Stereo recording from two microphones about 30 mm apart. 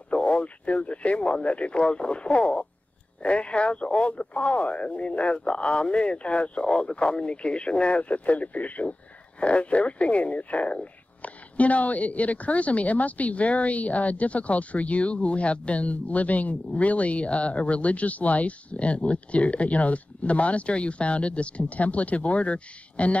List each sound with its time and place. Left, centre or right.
0.1 s speech: left
9.4 s a woman's voice: left